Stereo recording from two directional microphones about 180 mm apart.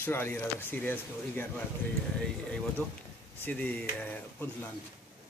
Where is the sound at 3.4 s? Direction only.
10° left (ahead or behind).